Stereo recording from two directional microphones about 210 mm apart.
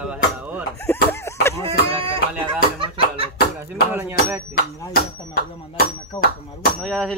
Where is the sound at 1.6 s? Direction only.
25° right (ahead or behind).